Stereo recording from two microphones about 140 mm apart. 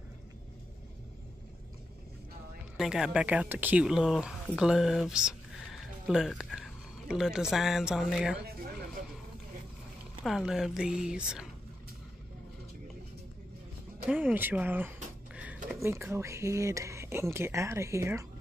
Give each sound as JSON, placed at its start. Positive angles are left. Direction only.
{"t": 2.8, "sound": "speech", "side_deg": -5}
{"t": 10.2, "sound": "speech", "side_deg": -5}
{"t": 14.0, "sound": "speech", "side_deg": -10}
{"t": 15.3, "sound": "a sound", "side_deg": -10}
{"t": 15.7, "sound": "speech", "side_deg": -15}